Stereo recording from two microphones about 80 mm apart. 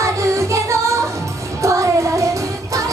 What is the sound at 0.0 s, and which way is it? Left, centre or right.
Music, right.